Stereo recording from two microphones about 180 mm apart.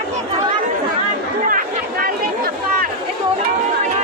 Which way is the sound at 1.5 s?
55° right (ahead or behind).